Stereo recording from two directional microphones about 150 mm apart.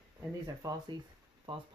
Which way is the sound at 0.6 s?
25° right (ahead or behind).